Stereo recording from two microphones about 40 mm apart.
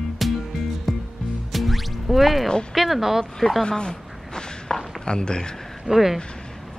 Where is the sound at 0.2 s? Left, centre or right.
Centre.